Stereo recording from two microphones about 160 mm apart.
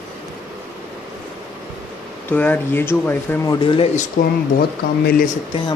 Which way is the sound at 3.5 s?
30° left (ahead or behind).